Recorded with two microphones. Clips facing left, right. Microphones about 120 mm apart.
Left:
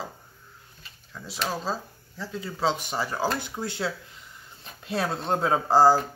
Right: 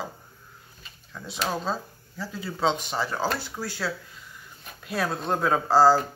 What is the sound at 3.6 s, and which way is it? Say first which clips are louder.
Speech: left 1 dB; 20° left (ahead or behind).